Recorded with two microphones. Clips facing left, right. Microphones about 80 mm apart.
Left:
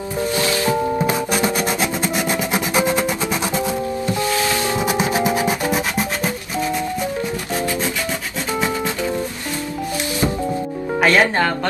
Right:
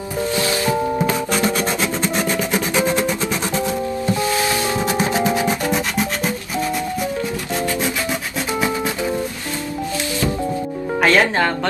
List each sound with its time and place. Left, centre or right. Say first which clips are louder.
1.0 s music: even; centre
11.0 s music: even; centre